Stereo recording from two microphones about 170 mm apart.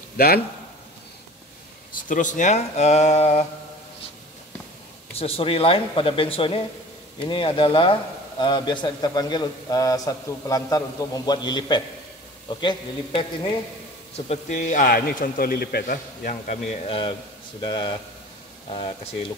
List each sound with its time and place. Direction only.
2.0 s speech: 50° left (ahead or behind)
5.1 s a man's voice: 35° left (ahead or behind)
14.1 s a man's voice: 40° left (ahead or behind)